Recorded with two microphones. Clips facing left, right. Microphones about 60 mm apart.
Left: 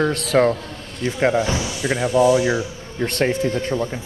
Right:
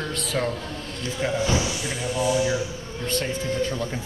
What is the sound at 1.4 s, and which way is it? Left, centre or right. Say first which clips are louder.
Speech: even; centre.